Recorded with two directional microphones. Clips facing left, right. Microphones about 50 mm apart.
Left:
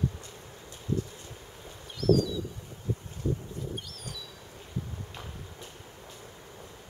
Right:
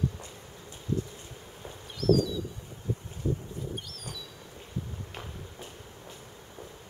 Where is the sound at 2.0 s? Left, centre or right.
Centre.